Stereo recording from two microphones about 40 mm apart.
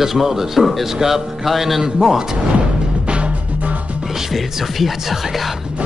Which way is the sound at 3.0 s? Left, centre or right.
Right.